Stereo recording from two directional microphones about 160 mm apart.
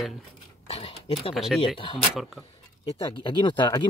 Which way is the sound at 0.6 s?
40° left (ahead or behind).